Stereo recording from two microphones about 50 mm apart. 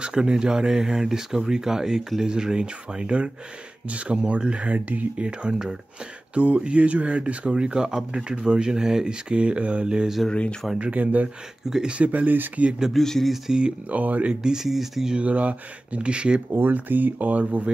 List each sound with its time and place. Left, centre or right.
0.0 s speech: centre
6.3 s speech: right
9.3 s speech: right
10.8 s speech: right
12.9 s speech: centre
13.3 s speech: centre
13.8 s speech: right
14.4 s speech: centre
15.1 s speech: right
16.7 s speech: right